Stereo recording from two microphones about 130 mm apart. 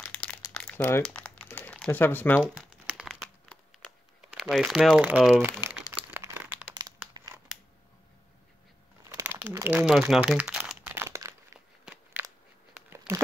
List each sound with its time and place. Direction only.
0.1 s crumpling: 10° left (ahead or behind)
1.0 s typing: 10° left (ahead or behind)
1.8 s speech: 15° left (ahead or behind)
2.5 s crumpling: 5° right (ahead or behind)
4.2 s speech: 5° right (ahead or behind)
5.4 s crumpling: 15° right (ahead or behind)
6.7 s crumpling: 30° right (ahead or behind)
9.2 s crumpling: 10° right (ahead or behind)
9.5 s a sound: 15° right (ahead or behind)
9.9 s speech: 5° right (ahead or behind)
10.7 s a sound: 10° right (ahead or behind)
11.1 s crumpling: 20° right (ahead or behind)
11.8 s crunch: 10° right (ahead or behind)
12.7 s a sound: 20° right (ahead or behind)